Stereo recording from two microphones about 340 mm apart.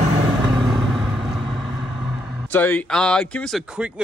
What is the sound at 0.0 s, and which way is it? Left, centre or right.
Vehicle, centre.